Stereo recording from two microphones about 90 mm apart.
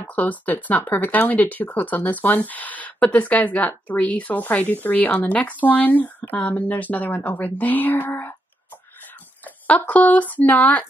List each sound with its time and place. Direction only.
0.0 s speech: 15° left (ahead or behind)
9.4 s speech: 20° left (ahead or behind)